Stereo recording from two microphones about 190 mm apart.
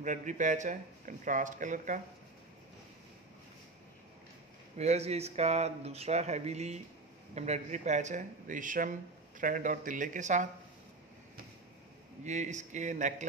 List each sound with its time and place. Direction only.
0.0 s speech: 40° right (ahead or behind)
4.7 s speech: 35° right (ahead or behind)
12.3 s speech: 40° right (ahead or behind)